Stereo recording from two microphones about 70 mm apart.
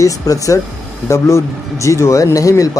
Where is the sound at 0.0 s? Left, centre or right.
Left.